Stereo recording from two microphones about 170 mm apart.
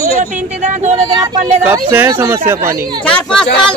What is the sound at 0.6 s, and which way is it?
Speech, 45° right (ahead or behind).